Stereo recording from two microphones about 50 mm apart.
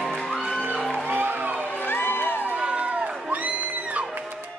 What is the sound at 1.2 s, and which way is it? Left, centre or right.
Music, right.